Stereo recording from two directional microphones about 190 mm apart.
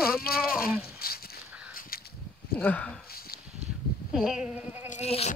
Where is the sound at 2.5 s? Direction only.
10° left (ahead or behind).